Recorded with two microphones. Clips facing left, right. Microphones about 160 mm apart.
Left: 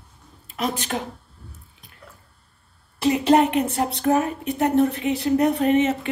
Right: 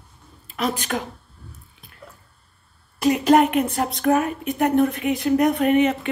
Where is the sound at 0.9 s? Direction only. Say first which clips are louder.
Right 1 dB; 25° left (ahead or behind).